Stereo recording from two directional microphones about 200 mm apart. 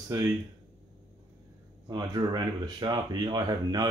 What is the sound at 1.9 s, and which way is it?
Speech, 20° right (ahead or behind).